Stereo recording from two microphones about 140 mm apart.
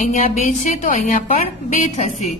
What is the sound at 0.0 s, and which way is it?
A woman's voice, 70° left (ahead or behind).